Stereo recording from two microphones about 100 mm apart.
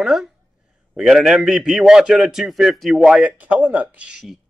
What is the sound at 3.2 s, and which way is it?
Speech, 15° right (ahead or behind).